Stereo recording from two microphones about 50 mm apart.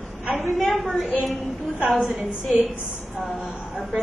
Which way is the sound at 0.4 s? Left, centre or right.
Centre.